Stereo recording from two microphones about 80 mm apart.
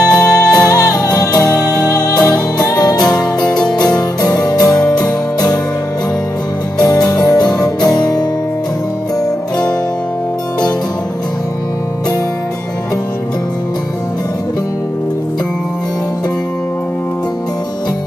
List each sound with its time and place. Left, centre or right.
0.0 s music: centre
0.7 s music: left
2.7 s music: left
3.4 s music: centre
4.2 s music: left
6.8 s music: left